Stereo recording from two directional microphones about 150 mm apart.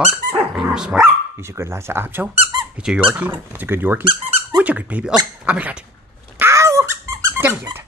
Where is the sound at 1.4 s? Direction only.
15° right (ahead or behind).